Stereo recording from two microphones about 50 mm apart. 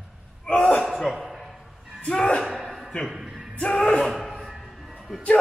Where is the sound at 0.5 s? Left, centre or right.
Left.